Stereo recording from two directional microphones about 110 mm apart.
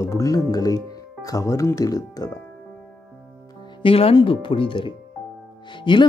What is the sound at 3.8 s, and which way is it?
Speech, 60° left (ahead or behind).